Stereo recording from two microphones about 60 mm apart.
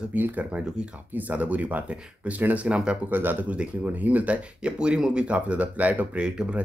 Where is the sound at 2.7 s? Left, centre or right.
Centre.